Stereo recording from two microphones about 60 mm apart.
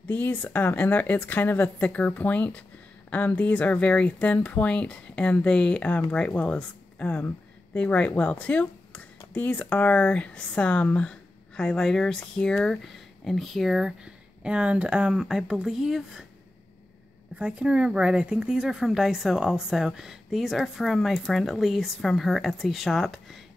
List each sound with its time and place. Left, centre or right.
0.1 s speech: left; by 16.3 s centre
17.4 s speech: centre